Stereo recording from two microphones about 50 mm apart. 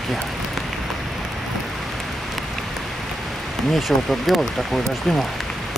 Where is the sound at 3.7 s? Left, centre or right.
Centre.